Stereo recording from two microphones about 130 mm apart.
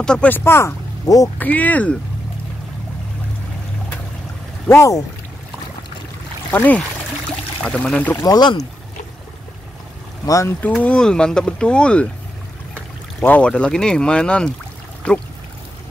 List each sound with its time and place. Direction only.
0.0 s speech: 10° left (ahead or behind); by 1.3 s 25° left (ahead or behind)
1.4 s speech: 10° left (ahead or behind)
4.6 s speech: 20° left (ahead or behind)
6.5 s speech: 10° left (ahead or behind)
8.2 s speech: 30° left (ahead or behind)
10.2 s speech: 25° left (ahead or behind)
10.6 s speech: 10° left (ahead or behind)
13.2 s speech: 10° left (ahead or behind)